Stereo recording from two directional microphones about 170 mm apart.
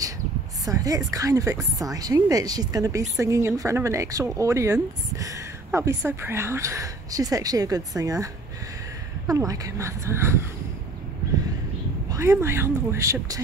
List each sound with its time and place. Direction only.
0.7 s speech: 20° right (ahead or behind)
9.3 s speech: 20° right (ahead or behind)
12.1 s speech: 15° right (ahead or behind)